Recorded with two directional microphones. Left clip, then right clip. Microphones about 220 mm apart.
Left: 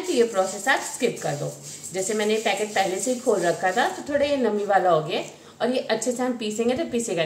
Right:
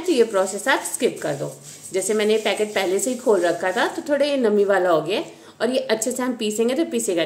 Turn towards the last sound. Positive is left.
turn(degrees=-50)  # may be behind; listen again after turning